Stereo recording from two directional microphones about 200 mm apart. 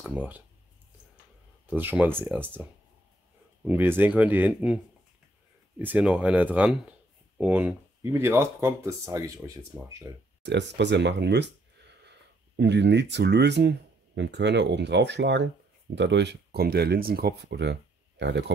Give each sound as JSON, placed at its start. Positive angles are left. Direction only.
{"t": 0.0, "sound": "speech", "side_deg": -10}
{"t": 1.7, "sound": "speech", "side_deg": -10}
{"t": 5.8, "sound": "speech", "side_deg": -10}
{"t": 10.4, "sound": "speech", "side_deg": -60}
{"t": 12.5, "sound": "speech", "side_deg": -60}